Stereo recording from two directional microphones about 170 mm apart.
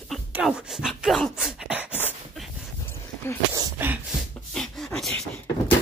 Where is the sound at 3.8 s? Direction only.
10° right (ahead or behind).